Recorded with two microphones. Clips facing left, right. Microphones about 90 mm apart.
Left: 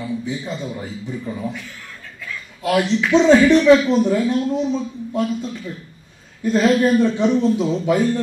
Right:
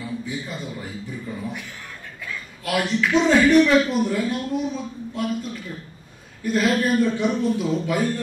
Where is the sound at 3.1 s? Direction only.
25° left (ahead or behind).